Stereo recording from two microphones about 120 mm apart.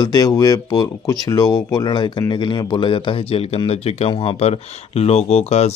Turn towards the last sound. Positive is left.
turn(degrees=65)  # may be behind; listen again after turning